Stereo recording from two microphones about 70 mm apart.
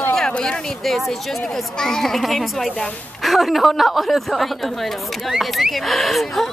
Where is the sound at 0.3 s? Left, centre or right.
Centre.